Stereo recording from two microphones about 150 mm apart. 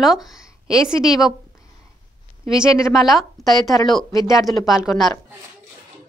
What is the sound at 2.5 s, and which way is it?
A woman's voice, 5° right (ahead or behind).